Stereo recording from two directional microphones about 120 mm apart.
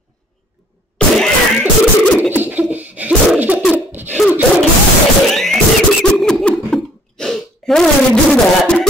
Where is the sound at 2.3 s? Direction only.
15° right (ahead or behind).